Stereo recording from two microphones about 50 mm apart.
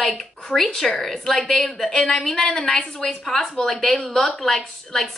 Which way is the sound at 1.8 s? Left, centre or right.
Centre.